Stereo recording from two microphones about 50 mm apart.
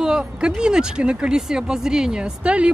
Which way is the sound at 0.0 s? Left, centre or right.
Centre.